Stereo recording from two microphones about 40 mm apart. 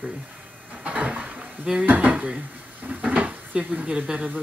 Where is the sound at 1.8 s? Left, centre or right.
Right.